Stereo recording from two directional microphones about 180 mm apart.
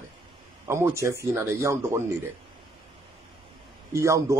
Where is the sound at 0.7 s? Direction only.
15° right (ahead or behind).